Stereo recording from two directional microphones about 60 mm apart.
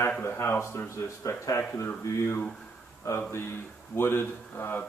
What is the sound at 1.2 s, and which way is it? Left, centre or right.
Speech, left.